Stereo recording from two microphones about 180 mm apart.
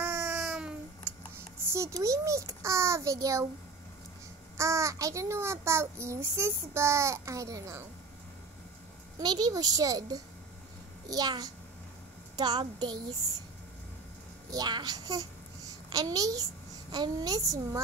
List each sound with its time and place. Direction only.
0.0 s babbling: 10° right (ahead or behind)
1.6 s a child's voice: 15° right (ahead or behind)
4.6 s a child's voice: 15° right (ahead or behind)
9.2 s a child's voice: 25° right (ahead or behind)
14.5 s a child's voice: 25° right (ahead or behind)